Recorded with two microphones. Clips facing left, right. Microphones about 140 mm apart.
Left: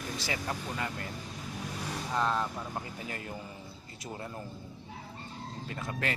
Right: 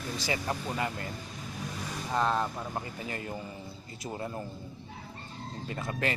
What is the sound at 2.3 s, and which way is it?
Speech, 20° right (ahead or behind).